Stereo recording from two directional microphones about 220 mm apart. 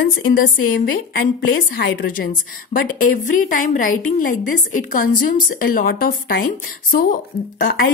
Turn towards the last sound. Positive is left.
turn(degrees=40)  # may be behind; listen again after turning